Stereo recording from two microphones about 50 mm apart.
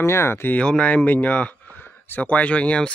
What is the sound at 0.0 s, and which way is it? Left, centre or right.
Speech, left.